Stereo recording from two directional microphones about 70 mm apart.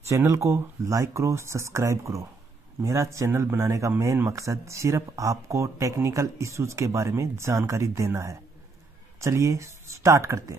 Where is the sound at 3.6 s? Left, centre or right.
Right.